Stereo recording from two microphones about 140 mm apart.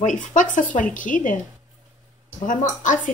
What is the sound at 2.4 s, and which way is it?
Speech, 65° left (ahead or behind).